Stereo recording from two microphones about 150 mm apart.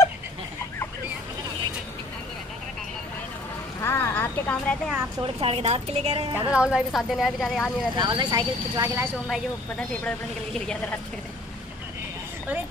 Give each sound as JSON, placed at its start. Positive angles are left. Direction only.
{"t": 3.8, "sound": "vehicle", "side_deg": 15}
{"t": 5.2, "sound": "a woman's voice", "side_deg": -40}
{"t": 6.5, "sound": "a woman's voice", "side_deg": -5}
{"t": 7.9, "sound": "speech", "side_deg": -30}
{"t": 9.3, "sound": "speech", "side_deg": 5}